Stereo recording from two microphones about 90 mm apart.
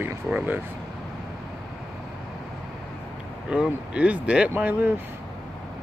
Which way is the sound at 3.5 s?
10° right (ahead or behind).